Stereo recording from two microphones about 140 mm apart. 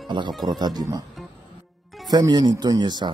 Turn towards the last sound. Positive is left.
turn(degrees=-30)  # may be behind; listen again after turning